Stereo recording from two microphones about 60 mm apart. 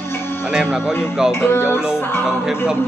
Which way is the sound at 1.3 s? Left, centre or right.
Left.